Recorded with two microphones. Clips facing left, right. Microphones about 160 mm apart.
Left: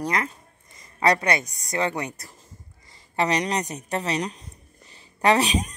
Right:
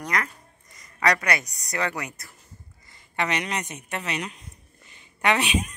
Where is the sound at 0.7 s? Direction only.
30° left (ahead or behind).